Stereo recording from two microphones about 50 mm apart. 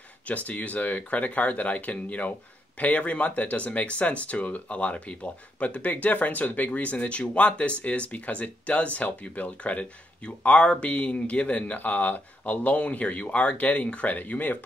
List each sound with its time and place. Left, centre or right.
0.3 s speech: left